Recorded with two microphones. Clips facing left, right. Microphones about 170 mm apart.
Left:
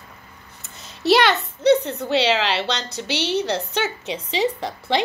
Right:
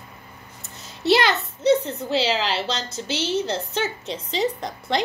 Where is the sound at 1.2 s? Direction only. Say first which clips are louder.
Left 3 dB; 65° left (ahead or behind).